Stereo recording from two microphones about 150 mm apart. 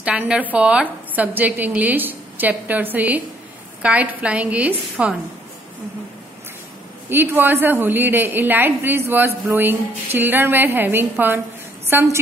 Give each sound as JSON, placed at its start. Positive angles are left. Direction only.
{"t": 0.0, "sound": "a woman's voice", "side_deg": -10}
{"t": 7.1, "sound": "a woman's voice", "side_deg": -15}